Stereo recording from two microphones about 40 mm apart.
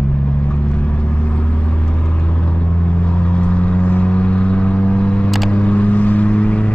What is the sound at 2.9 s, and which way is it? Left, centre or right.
Vehicle, left.